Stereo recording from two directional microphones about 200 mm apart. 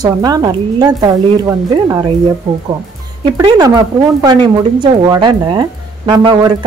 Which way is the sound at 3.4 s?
20° right (ahead or behind).